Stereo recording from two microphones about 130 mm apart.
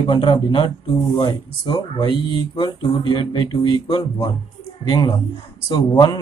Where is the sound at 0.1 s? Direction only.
40° left (ahead or behind).